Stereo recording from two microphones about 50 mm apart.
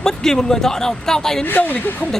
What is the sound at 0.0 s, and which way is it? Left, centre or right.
Speech, centre.